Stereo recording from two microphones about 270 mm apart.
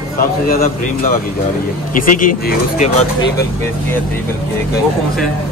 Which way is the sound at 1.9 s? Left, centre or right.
Left.